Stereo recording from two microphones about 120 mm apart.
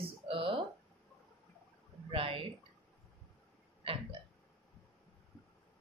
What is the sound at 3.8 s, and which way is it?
Speech, 50° right (ahead or behind).